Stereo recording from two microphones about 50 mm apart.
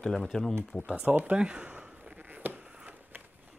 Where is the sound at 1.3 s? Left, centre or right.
Centre.